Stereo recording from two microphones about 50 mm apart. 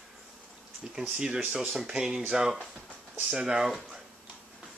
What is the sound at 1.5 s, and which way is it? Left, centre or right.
Speech, centre.